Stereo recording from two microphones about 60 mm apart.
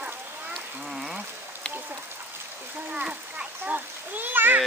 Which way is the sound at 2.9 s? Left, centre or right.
Centre.